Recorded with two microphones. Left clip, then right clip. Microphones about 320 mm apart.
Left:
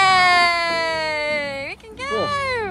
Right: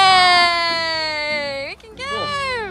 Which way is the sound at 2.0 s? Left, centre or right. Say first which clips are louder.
Left 1 dB; centre.